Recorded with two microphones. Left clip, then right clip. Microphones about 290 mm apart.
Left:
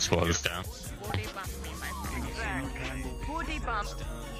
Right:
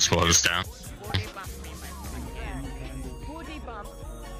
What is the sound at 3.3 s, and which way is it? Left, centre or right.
Music, left.